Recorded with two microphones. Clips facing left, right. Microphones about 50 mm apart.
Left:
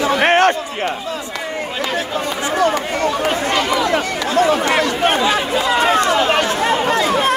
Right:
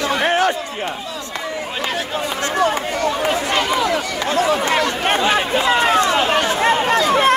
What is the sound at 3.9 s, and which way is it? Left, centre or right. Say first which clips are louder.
Chatter: left 2 dB; left.